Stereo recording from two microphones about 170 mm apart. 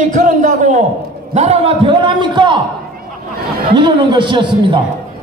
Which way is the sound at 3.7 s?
25° right (ahead or behind).